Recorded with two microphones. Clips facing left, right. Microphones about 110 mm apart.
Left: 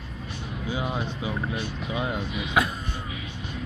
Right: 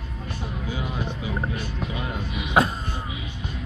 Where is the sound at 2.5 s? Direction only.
35° right (ahead or behind).